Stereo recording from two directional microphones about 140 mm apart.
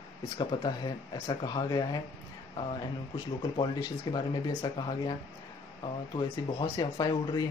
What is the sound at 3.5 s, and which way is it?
Speech, 35° left (ahead or behind).